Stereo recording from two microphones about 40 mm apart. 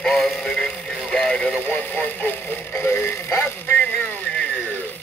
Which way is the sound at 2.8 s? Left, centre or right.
Left.